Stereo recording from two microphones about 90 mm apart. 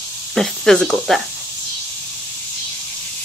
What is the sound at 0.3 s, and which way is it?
Speech, 5° left (ahead or behind).